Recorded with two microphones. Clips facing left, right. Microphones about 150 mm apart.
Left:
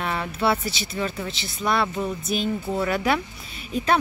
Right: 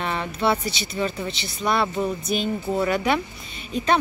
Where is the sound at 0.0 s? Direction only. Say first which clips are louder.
Right 1 dB; 5° left (ahead or behind).